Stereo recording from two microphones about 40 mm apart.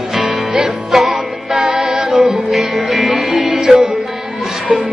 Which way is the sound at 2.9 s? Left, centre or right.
Centre.